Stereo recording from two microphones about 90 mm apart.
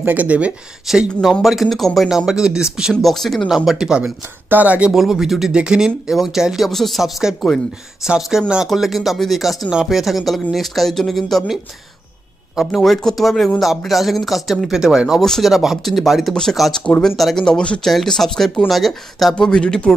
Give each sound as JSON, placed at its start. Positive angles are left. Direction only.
{"t": 0.0, "sound": "speech", "side_deg": -15}
{"t": 0.9, "sound": "speech", "side_deg": -5}
{"t": 2.9, "sound": "speech", "side_deg": 0}
{"t": 4.9, "sound": "speech", "side_deg": -5}